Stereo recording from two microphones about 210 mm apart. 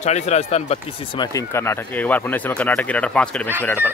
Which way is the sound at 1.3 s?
10° left (ahead or behind).